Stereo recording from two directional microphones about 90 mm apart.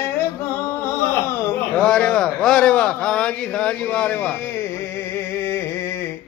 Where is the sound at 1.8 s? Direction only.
10° left (ahead or behind).